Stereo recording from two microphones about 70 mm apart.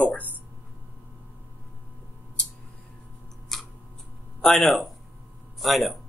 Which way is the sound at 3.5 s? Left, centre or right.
Centre.